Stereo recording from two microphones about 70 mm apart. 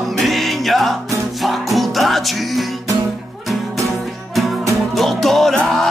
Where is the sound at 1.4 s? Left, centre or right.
Centre.